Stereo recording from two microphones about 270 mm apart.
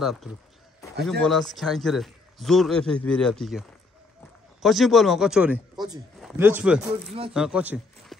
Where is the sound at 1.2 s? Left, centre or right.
Centre.